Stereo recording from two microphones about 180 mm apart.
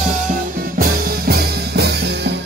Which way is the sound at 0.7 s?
60° right (ahead or behind).